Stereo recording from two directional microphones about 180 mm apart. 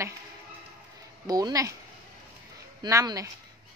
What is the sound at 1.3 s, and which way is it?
Speech, 20° right (ahead or behind).